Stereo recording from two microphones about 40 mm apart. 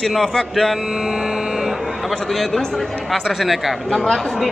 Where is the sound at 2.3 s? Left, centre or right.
Centre.